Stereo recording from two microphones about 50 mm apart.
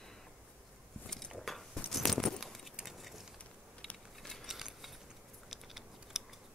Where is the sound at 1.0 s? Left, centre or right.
Centre.